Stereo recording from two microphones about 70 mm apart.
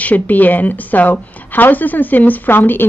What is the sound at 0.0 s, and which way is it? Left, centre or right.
A woman's voice, left.